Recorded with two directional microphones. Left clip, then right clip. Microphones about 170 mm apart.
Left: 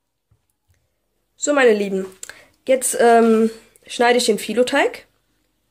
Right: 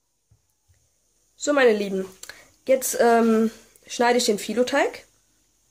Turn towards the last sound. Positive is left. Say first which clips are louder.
# left 4 dB
turn(degrees=15)  # may be behind; listen again after turning